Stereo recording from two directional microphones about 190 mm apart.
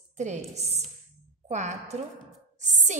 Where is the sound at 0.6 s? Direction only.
35° right (ahead or behind).